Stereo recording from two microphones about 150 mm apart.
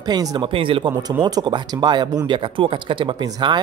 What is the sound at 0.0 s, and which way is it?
Speech, 25° right (ahead or behind).